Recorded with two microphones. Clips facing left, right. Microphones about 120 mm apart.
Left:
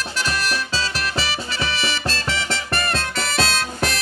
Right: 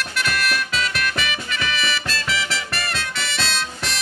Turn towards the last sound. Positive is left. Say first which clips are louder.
# left 4 dB
turn(degrees=50)  # may be behind; listen again after turning